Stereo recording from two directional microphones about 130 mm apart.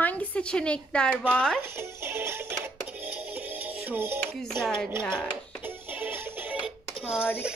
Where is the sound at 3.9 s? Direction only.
15° right (ahead or behind).